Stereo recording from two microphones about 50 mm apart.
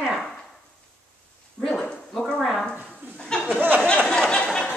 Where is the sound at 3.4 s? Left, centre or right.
Right.